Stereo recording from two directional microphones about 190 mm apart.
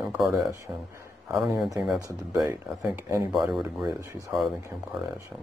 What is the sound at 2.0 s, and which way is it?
Speech, 15° right (ahead or behind).